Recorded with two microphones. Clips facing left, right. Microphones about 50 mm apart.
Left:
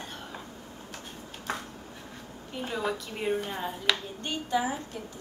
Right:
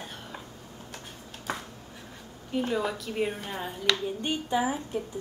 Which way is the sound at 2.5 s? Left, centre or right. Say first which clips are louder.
Right 3 dB; centre.